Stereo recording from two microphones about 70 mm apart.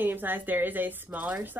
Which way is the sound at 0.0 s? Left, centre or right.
Right.